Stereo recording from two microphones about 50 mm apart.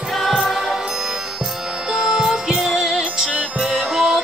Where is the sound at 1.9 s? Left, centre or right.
Centre.